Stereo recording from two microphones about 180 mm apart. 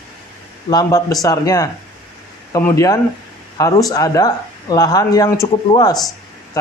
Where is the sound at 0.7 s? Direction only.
20° left (ahead or behind).